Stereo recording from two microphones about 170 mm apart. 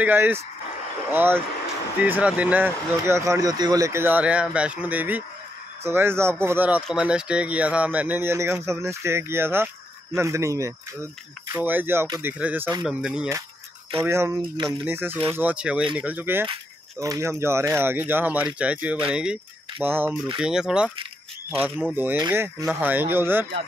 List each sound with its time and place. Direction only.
0.0 s speech: 10° right (ahead or behind)
13.9 s speech: 15° right (ahead or behind)
21.9 s speech: 10° right (ahead or behind)